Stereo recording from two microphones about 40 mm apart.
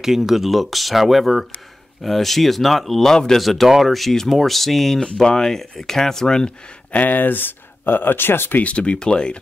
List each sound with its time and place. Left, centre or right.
0.0 s speech: centre
3.1 s speech: centre
3.3 s speech: centre
4.1 s speech: centre
6.9 s speech: left
8.5 s speech: left